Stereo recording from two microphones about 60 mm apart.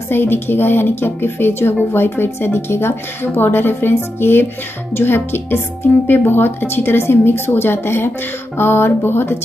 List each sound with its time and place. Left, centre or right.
0.1 s a woman's voice: left